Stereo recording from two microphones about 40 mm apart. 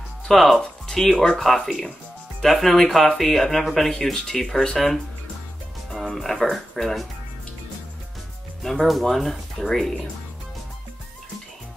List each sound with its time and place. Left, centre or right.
0.3 s speech: centre
5.9 s music: centre
6.5 s speech: centre
8.6 s speech: centre